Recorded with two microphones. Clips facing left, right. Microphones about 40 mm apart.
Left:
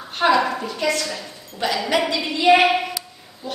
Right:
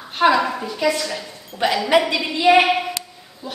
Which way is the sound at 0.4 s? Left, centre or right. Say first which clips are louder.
Even; centre.